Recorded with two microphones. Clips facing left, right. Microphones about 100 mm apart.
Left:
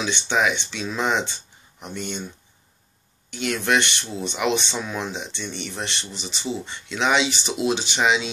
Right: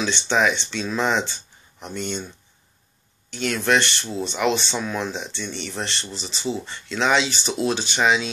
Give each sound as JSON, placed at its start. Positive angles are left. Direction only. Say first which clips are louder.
{"t": 0.0, "sound": "speech", "louder": "right 2 dB", "side_deg": 15}
{"t": 3.3, "sound": "speech", "louder": "right 1 dB", "side_deg": 15}